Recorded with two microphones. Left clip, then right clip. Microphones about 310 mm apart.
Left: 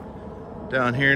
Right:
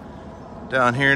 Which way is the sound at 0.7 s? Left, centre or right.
Centre.